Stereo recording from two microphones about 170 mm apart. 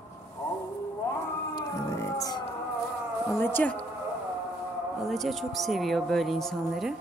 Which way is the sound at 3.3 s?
10° left (ahead or behind).